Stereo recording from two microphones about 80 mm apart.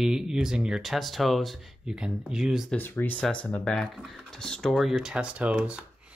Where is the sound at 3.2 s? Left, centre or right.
Centre.